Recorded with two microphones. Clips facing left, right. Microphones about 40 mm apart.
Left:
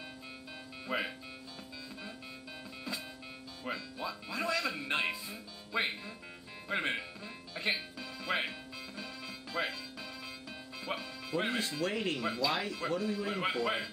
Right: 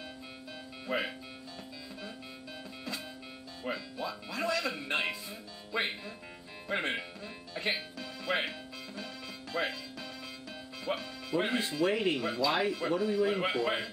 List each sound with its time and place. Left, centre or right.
0.8 s a man's voice: centre
3.6 s a man's voice: centre
7.5 s music: centre
10.9 s speech: centre